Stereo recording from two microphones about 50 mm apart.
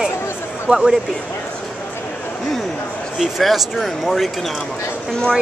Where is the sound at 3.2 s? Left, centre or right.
Centre.